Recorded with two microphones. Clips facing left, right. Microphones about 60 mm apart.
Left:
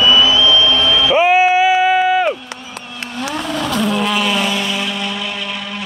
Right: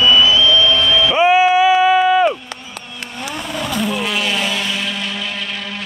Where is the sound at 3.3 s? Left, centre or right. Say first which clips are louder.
Left 3 dB; centre.